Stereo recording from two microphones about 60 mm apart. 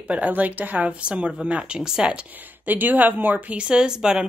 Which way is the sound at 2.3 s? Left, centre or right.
Right.